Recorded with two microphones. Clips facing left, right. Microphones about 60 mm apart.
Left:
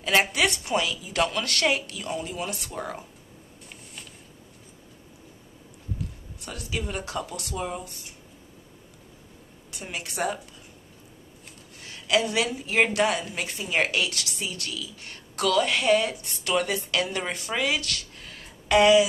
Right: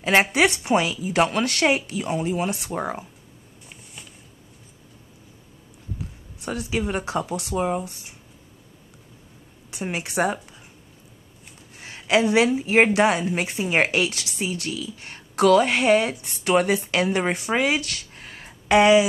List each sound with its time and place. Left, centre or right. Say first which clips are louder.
0.0 s a woman's voice: right 4 dB; right
6.4 s a woman's voice: right 7 dB; right
9.7 s a woman's voice: right 7 dB; right
11.8 s a woman's voice: right 4 dB; right